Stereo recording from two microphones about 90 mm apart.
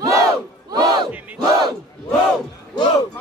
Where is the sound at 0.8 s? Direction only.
55° right (ahead or behind).